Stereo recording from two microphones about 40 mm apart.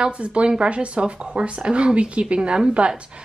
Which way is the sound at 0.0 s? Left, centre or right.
Right.